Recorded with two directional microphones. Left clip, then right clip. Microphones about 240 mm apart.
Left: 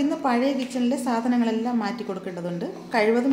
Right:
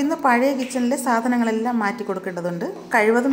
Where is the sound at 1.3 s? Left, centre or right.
Centre.